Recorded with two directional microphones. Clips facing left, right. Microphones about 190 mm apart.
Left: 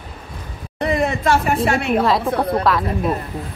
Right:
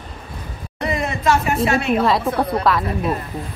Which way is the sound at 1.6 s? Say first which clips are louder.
Even; 55° left (ahead or behind).